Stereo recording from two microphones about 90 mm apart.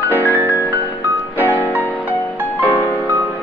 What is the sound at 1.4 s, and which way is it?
Music, 20° left (ahead or behind).